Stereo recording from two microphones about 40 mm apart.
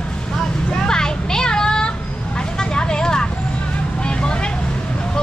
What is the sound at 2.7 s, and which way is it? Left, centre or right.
Vehicle, left.